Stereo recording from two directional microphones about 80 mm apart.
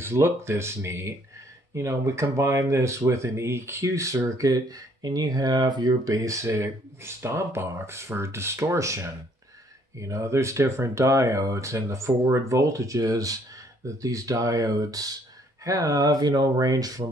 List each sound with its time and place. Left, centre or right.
0.0 s speech: right